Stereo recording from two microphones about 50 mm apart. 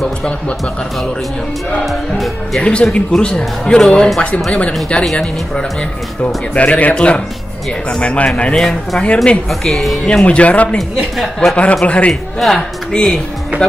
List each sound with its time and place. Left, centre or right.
1.9 s music: centre
2.6 s speech: left
6.2 s speech: left
8.5 s speech: centre
9.0 s speech: left
9.7 s speech: centre
10.0 s speech: left
12.1 s music: centre
12.9 s speech: centre